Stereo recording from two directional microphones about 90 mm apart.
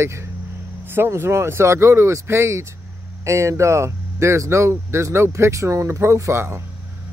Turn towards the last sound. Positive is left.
turn(degrees=-30)  # may be behind; listen again after turning